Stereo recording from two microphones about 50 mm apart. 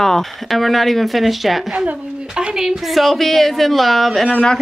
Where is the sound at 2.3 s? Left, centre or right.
Centre.